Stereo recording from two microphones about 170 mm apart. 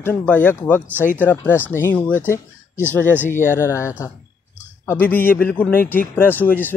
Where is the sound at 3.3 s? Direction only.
15° left (ahead or behind).